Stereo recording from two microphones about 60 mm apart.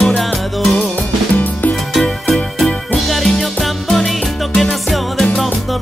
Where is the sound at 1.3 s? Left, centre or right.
Left.